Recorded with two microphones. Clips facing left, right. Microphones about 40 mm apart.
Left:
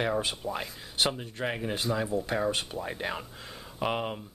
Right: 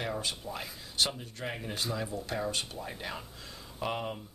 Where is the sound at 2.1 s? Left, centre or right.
Left.